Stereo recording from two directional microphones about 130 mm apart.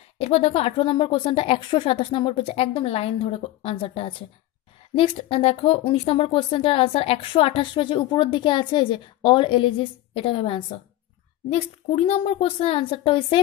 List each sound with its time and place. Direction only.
0.2 s speech: 50° left (ahead or behind)
11.5 s speech: 55° left (ahead or behind)